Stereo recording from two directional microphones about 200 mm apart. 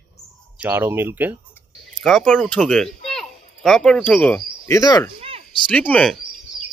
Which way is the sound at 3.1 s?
Centre (ahead or behind).